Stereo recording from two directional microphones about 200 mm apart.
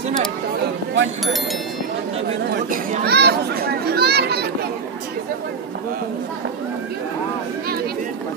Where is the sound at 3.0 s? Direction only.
55° right (ahead or behind).